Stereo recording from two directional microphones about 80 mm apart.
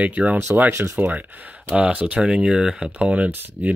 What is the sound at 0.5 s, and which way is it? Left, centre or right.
Speech, right.